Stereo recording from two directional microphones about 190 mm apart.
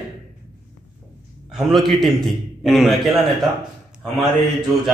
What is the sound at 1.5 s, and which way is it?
A man's voice, centre (ahead or behind).